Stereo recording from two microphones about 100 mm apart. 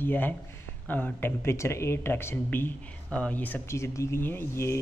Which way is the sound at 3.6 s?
30° left (ahead or behind).